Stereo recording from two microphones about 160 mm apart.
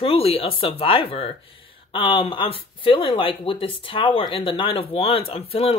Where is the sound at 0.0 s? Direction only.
35° left (ahead or behind).